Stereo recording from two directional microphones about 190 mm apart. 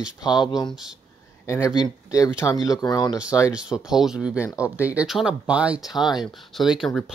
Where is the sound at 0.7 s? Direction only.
5° right (ahead or behind).